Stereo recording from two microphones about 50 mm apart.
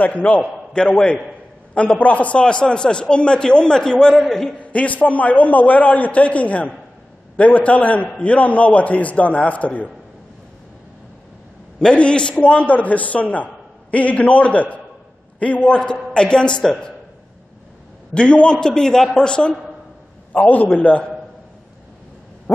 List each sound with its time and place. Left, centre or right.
0.2 s a man's voice: centre
4.6 s a man's voice: left
11.9 s a man's voice: left
15.3 s a sound: left
15.7 s a man's voice: centre
18.1 s a man's voice: left
20.4 s a man's voice: left